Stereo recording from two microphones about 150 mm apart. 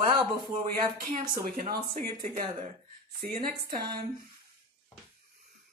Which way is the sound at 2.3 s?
55° right (ahead or behind).